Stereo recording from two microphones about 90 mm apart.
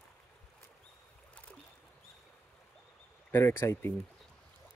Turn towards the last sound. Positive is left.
turn(degrees=25)  # may be behind; listen again after turning